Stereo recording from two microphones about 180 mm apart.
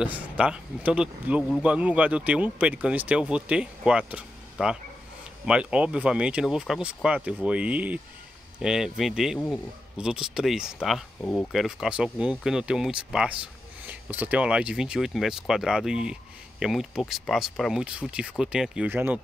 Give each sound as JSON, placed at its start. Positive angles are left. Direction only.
{"t": 0.0, "sound": "speech", "side_deg": -5}